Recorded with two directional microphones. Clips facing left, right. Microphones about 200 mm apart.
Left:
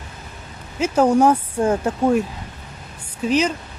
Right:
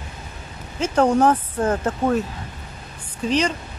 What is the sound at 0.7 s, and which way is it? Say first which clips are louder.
Speech: left 2 dB; 5° left (ahead or behind).